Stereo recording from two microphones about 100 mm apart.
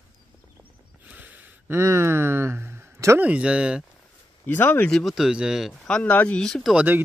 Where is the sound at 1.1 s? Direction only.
15° right (ahead or behind).